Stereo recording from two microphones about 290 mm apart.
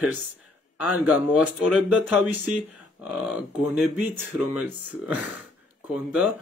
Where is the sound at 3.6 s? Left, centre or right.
Centre.